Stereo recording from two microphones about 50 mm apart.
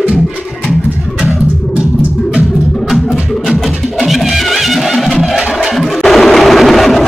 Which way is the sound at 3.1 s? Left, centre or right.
Centre.